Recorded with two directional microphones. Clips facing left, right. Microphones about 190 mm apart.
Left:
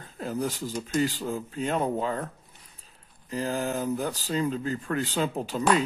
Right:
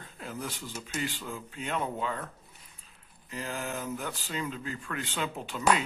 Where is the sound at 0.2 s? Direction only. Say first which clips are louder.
Left 9 dB; 40° left (ahead or behind).